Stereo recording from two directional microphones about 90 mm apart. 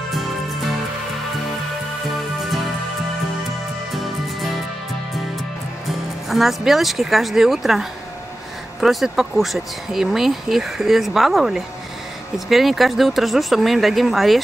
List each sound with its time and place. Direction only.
0.1 s music: centre (ahead or behind)
2.1 s music: centre (ahead or behind)
3.9 s music: centre (ahead or behind)
5.9 s speech: centre (ahead or behind)
8.8 s speech: 5° right (ahead or behind)